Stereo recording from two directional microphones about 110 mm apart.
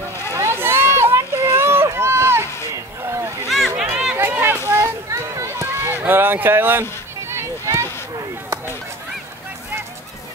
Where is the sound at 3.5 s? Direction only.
Centre (ahead or behind).